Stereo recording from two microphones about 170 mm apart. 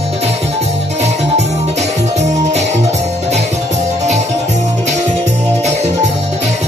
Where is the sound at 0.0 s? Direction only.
40° right (ahead or behind).